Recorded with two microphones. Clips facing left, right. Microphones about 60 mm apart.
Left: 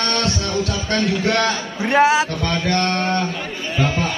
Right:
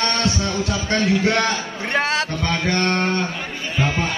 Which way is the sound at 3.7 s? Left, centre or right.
Centre.